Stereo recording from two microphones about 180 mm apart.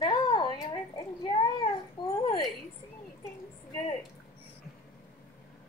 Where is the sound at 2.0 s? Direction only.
25° left (ahead or behind).